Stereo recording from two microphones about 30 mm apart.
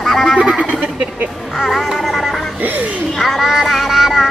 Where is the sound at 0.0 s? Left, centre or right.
Centre.